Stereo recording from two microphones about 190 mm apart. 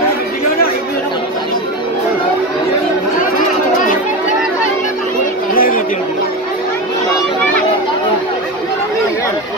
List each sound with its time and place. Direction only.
5.5 s music: 50° left (ahead or behind)